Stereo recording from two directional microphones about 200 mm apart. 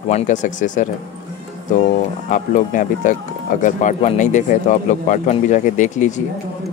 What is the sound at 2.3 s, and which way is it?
Speech, 40° left (ahead or behind).